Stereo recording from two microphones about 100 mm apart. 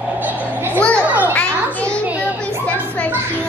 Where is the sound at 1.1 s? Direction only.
15° right (ahead or behind).